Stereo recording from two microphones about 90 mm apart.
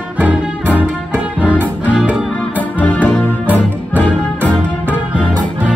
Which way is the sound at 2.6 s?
15° left (ahead or behind).